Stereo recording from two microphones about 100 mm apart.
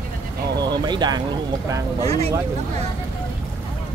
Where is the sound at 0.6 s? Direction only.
45° right (ahead or behind).